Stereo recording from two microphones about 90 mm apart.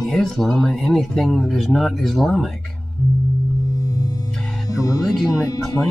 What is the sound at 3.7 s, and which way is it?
Chirp tone, 45° left (ahead or behind).